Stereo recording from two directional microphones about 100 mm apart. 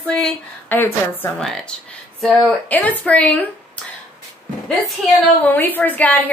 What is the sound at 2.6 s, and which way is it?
Speech, 15° left (ahead or behind).